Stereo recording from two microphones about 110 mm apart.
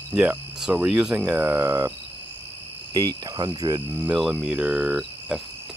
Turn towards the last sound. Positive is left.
turn(degrees=-5)  # may be behind; listen again after turning